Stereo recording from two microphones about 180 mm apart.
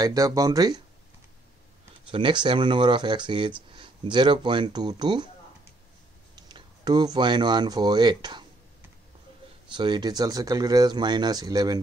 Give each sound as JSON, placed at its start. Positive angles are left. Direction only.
{"t": 0.0, "sound": "speech", "side_deg": -20}
{"t": 2.0, "sound": "speech", "side_deg": -30}
{"t": 6.5, "sound": "speech", "side_deg": -25}
{"t": 9.7, "sound": "speech", "side_deg": -25}